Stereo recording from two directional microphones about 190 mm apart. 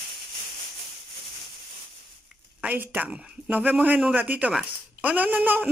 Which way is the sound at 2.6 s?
10° right (ahead or behind).